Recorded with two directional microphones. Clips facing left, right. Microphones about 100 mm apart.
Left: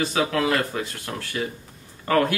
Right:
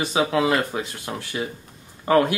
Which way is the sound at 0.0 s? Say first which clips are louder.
Right 2 dB; 20° right (ahead or behind).